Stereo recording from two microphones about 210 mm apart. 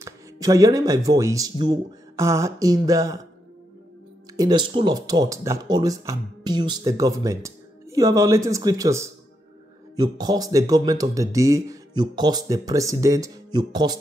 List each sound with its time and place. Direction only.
0.0 s speech: 15° right (ahead or behind)
4.4 s speech: 20° right (ahead or behind)